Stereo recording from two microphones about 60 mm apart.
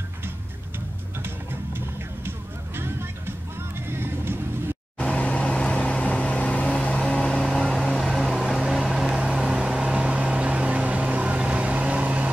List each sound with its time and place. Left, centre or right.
1.2 s music: right
5.0 s vehicle: left; by 12.3 s right